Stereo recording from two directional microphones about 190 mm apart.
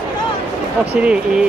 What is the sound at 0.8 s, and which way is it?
Speech, 5° right (ahead or behind).